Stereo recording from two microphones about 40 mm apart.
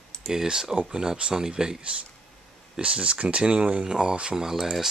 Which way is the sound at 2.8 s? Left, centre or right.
Right.